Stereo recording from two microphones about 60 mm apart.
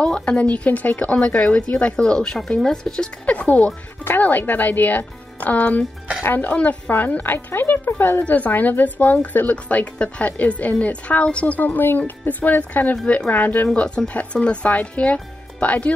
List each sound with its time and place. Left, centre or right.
0.0 s speech: centre
3.3 s a woman's voice: left
12.9 s speech: centre
13.7 s speech: centre